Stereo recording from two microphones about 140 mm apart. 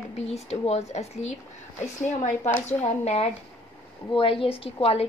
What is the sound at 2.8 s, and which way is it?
A woman's voice, 50° left (ahead or behind).